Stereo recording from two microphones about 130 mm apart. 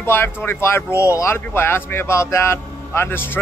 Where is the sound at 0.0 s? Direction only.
20° left (ahead or behind).